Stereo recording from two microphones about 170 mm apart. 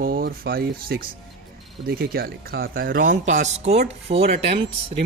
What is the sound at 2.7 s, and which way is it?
Speech, 60° right (ahead or behind).